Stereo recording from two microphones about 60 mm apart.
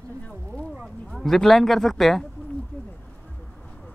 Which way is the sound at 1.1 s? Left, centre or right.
Centre.